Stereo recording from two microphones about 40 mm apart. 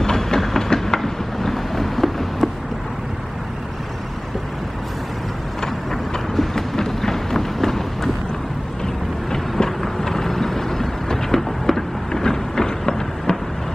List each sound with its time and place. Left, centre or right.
0.0 s train: centre
0.7 s a sound: centre
5.6 s vehicle: centre